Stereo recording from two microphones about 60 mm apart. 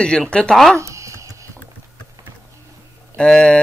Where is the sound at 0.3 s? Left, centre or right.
Centre.